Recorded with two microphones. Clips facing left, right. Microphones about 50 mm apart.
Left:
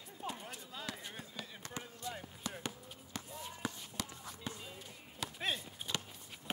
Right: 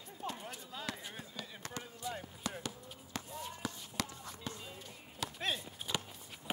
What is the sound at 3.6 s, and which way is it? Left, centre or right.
Run, left.